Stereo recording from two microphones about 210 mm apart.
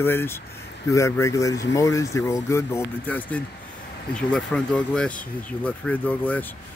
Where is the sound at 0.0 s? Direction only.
10° left (ahead or behind).